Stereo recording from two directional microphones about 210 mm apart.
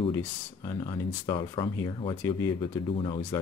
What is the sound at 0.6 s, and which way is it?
Speech, 20° left (ahead or behind).